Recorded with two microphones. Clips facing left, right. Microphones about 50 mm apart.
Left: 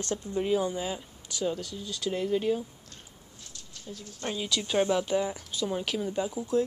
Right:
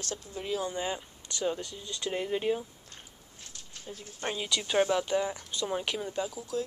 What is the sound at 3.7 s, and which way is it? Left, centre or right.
Speech, right.